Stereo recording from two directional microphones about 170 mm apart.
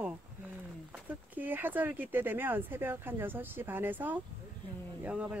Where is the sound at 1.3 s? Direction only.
10° right (ahead or behind).